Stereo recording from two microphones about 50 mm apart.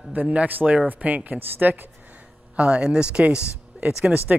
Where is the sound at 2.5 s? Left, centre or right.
Right.